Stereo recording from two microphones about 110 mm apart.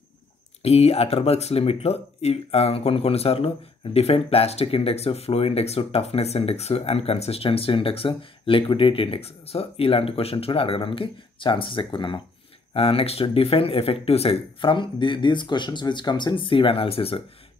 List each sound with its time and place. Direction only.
0.6 s speech: 70° left (ahead or behind); by 12.2 s 45° left (ahead or behind)
12.7 s speech: 60° left (ahead or behind)